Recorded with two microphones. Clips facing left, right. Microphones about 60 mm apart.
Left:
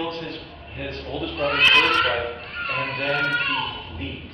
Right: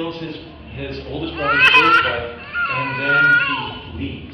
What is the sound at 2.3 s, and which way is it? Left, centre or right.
Cat, right.